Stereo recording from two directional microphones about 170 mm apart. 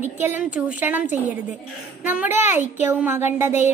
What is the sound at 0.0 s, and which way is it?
A woman's voice, 10° right (ahead or behind).